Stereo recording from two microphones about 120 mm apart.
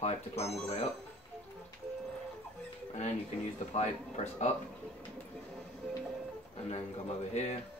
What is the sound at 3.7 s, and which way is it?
Speech, 65° left (ahead or behind).